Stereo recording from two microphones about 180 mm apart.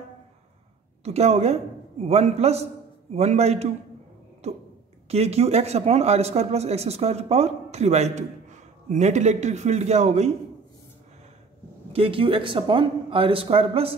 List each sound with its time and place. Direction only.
1.0 s a man's voice: 35° right (ahead or behind)
11.9 s speech: 30° right (ahead or behind)